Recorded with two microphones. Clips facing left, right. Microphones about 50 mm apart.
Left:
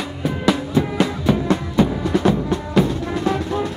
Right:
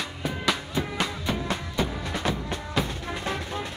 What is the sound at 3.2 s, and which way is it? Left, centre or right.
Vehicle, left.